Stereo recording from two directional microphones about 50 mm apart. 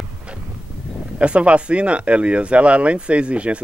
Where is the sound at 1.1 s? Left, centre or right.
Right.